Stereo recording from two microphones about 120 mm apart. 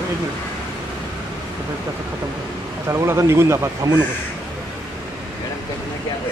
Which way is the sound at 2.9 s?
25° right (ahead or behind).